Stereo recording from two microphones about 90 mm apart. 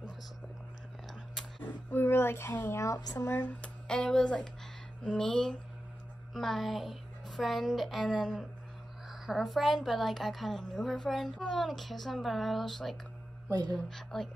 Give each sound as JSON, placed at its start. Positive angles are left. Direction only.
{"t": 1.7, "sound": "speech", "side_deg": 20}
{"t": 2.8, "sound": "speech", "side_deg": 45}
{"t": 3.2, "sound": "a woman's voice", "side_deg": 25}